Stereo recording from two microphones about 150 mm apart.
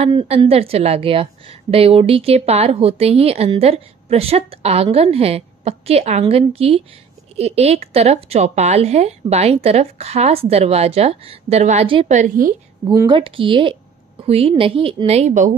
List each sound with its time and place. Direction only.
0.0 s a woman's voice: 40° right (ahead or behind)
12.1 s a woman's voice: 60° right (ahead or behind)
12.8 s a woman's voice: 25° right (ahead or behind); by 15.5 s 50° right (ahead or behind)